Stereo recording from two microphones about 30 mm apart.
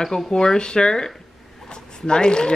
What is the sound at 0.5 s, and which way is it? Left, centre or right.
Speech, left.